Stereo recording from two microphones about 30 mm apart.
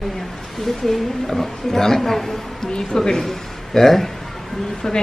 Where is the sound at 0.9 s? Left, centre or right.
Centre.